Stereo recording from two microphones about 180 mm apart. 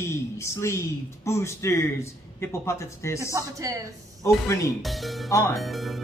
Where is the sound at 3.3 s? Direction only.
15° right (ahead or behind).